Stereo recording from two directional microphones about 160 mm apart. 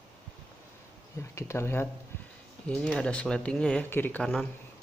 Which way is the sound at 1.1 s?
20° left (ahead or behind).